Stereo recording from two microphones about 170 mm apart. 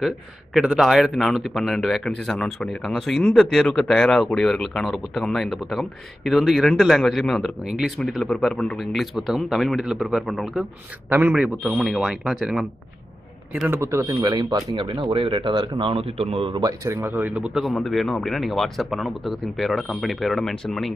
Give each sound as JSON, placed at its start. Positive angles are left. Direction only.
{"t": 0.6, "sound": "speech", "side_deg": 0}
{"t": 11.3, "sound": "speech", "side_deg": 0}
{"t": 13.6, "sound": "speech", "side_deg": -15}